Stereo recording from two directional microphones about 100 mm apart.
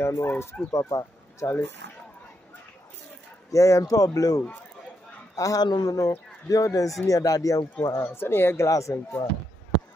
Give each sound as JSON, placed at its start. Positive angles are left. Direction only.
{"t": 0.0, "sound": "speech", "side_deg": 25}
{"t": 3.5, "sound": "speech", "side_deg": 35}
{"t": 7.8, "sound": "speech", "side_deg": 25}